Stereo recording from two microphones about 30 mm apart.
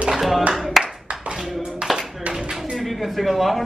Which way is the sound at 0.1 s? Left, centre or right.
Centre.